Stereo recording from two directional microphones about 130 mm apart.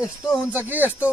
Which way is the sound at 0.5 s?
15° right (ahead or behind).